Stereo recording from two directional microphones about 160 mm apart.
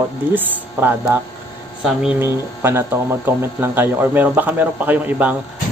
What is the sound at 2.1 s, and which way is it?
Speech, 15° right (ahead or behind).